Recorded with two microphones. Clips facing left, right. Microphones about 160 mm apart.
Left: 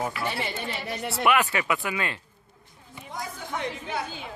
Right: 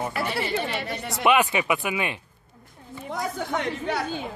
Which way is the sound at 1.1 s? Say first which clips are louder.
Right 3 dB; 20° right (ahead or behind).